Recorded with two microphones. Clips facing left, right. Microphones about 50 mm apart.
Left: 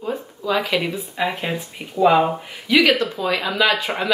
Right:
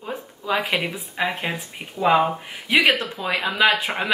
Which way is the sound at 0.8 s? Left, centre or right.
Centre.